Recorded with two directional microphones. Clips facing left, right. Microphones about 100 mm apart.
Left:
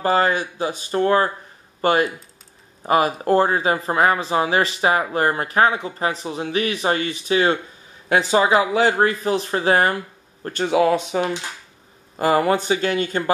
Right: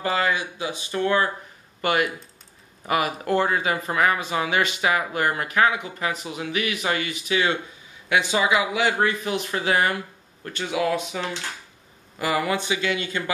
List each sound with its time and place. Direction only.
0.0 s speech: 40° left (ahead or behind)
12.2 s speech: 40° left (ahead or behind)